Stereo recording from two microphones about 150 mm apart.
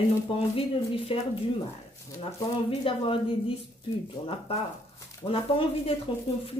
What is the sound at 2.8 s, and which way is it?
Speech, 35° left (ahead or behind).